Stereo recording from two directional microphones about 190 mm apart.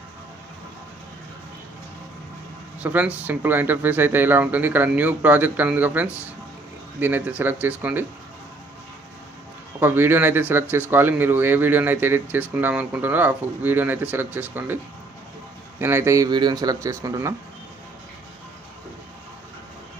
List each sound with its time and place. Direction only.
2.8 s speech: 10° right (ahead or behind)
9.8 s speech: 10° right (ahead or behind)
15.8 s speech: 10° right (ahead or behind)